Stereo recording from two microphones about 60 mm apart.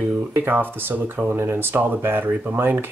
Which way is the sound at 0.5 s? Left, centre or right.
Right.